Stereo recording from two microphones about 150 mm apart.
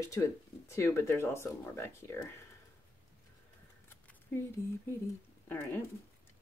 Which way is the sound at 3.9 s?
15° left (ahead or behind).